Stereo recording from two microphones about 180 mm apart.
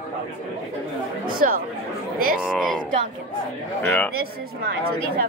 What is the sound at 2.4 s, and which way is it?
Speech, 5° right (ahead or behind).